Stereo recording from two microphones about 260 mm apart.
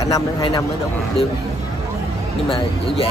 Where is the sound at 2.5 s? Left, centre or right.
Left.